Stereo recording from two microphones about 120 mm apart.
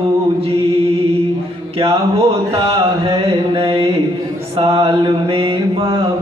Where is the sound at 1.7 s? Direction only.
55° right (ahead or behind).